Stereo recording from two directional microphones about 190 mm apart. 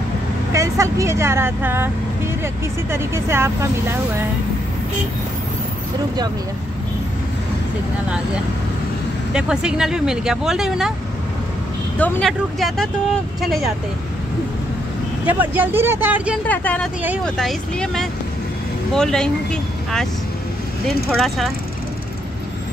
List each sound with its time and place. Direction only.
0.5 s speech: 15° right (ahead or behind)
9.3 s speech: 5° right (ahead or behind)
12.0 s speech: 5° left (ahead or behind)
15.2 s speech: 10° right (ahead or behind)
16.4 s speech: 10° left (ahead or behind)